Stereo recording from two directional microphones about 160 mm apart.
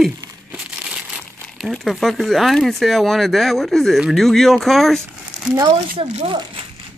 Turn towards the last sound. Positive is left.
turn(degrees=-30)  # may be behind; listen again after turning